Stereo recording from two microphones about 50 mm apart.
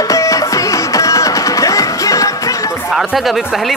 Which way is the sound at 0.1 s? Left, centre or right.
Left.